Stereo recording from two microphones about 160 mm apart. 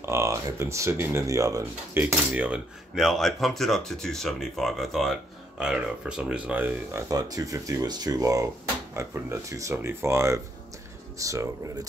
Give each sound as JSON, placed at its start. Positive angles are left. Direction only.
{"t": 0.0, "sound": "speech", "side_deg": -20}